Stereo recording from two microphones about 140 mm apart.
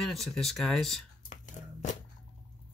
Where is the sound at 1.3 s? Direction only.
65° left (ahead or behind).